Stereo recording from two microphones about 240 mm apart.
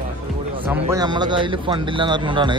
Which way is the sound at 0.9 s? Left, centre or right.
Centre.